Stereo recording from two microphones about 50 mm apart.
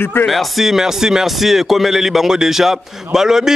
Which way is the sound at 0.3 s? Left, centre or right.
Centre.